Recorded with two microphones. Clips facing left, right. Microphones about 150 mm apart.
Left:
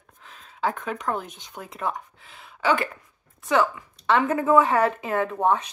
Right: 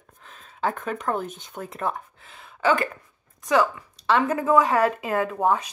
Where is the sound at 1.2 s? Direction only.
50° right (ahead or behind).